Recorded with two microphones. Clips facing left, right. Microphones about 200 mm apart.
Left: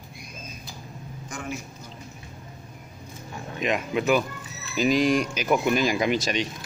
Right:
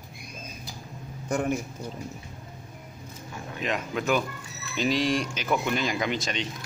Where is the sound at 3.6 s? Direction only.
10° left (ahead or behind).